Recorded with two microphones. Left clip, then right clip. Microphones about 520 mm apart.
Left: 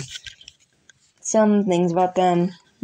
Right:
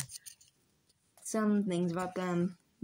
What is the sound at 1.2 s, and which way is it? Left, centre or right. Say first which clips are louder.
Speech: left 15 dB; right.